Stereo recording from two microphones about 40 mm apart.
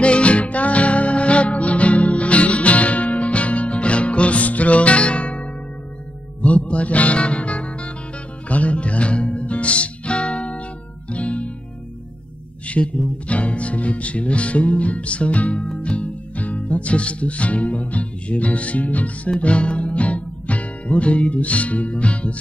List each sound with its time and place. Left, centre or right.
0.0 s music: left
12.6 s music: left
19.3 s music: left